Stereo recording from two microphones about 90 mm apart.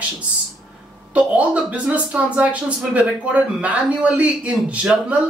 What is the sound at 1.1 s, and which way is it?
Speech, 15° right (ahead or behind).